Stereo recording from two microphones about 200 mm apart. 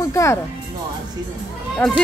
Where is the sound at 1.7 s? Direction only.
5° left (ahead or behind).